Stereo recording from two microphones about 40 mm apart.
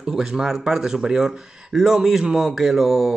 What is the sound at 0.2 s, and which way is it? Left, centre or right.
Speech, centre.